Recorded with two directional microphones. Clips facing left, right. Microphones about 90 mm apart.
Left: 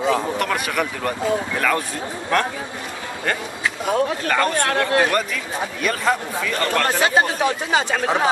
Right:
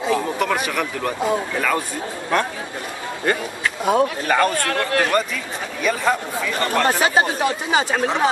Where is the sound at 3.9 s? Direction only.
10° right (ahead or behind).